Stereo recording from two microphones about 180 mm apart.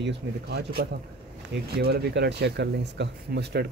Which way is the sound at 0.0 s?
65° right (ahead or behind).